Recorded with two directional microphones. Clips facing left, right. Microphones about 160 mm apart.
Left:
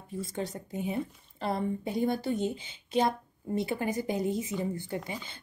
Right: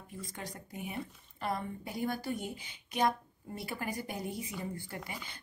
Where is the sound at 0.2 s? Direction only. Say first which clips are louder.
Left 10 dB; 25° left (ahead or behind).